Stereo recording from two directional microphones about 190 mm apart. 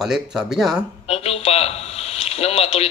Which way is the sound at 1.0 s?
30° left (ahead or behind).